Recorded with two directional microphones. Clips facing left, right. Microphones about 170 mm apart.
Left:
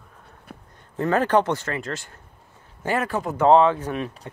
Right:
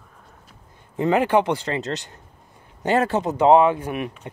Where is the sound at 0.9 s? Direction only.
15° right (ahead or behind).